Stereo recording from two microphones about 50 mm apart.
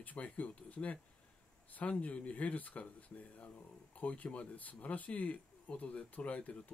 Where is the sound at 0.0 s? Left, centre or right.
Left.